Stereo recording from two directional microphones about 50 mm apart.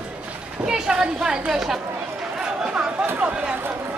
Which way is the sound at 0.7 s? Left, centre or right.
Centre.